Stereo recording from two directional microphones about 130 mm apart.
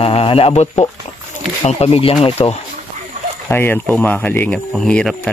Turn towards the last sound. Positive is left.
turn(degrees=5)  # may be behind; listen again after turning